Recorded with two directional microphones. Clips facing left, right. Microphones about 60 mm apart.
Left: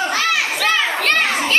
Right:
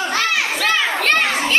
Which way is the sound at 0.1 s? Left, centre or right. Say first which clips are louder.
Even; centre.